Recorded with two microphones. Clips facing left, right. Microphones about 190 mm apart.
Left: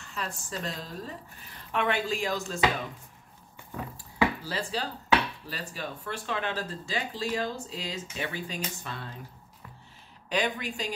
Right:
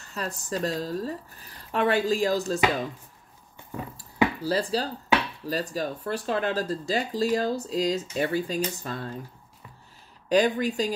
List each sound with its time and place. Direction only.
0.0 s speech: 40° right (ahead or behind)
3.9 s speech: 40° right (ahead or behind)
10.3 s speech: 40° right (ahead or behind)